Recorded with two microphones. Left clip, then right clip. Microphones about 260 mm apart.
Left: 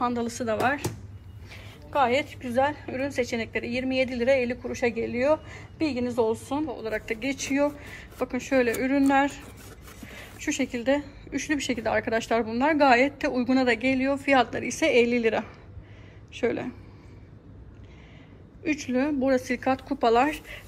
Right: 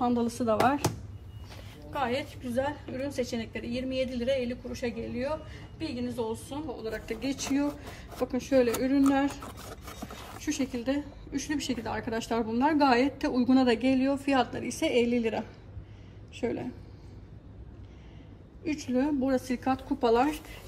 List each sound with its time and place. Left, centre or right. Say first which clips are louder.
0.0 s a woman's voice: left 1 dB; centre
10.5 s speech: left 6 dB; left
11.4 s a woman's voice: left 7 dB; centre
18.6 s a woman's voice: left 3 dB; centre